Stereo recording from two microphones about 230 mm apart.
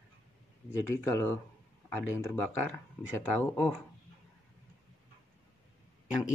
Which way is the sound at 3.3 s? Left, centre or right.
Centre.